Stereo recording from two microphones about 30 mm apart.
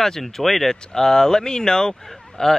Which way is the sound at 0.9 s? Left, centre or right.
Centre.